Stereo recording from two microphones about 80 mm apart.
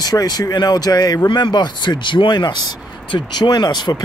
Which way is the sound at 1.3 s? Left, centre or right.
Left.